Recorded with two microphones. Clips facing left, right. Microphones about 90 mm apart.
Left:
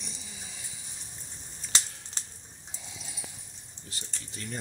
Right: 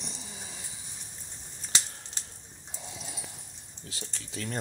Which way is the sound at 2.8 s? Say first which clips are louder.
Right 5 dB; 45° right (ahead or behind).